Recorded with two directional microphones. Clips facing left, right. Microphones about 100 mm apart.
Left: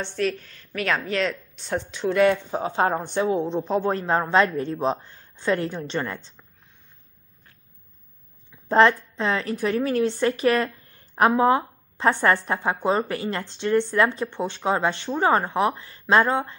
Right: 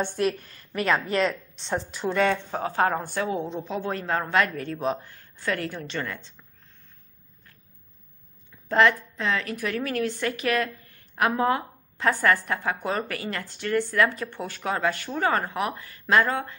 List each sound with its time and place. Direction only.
0.4 s speech: 5° right (ahead or behind)
2.5 s a woman's voice: 20° left (ahead or behind)
8.6 s a woman's voice: 30° left (ahead or behind)